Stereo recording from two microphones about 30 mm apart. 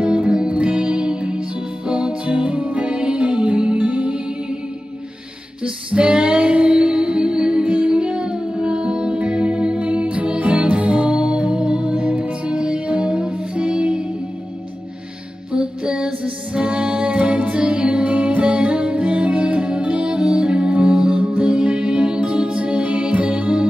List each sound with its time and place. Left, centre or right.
0.0 s music: right
2.3 s music: right
2.9 s music: right
3.3 s music: right
5.9 s music: right
11.1 s music: right
12.4 s music: right
15.5 s music: right
17.2 s music: right
17.6 s music: right
18.6 s music: right
20.1 s music: right
23.1 s music: right